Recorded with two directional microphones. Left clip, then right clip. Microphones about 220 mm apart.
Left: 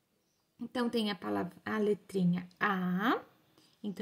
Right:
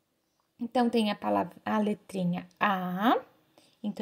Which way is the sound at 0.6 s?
15° right (ahead or behind).